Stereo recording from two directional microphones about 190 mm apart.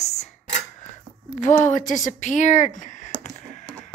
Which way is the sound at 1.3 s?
40° left (ahead or behind).